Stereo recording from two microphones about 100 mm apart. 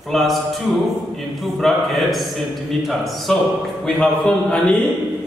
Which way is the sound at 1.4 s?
Centre (ahead or behind).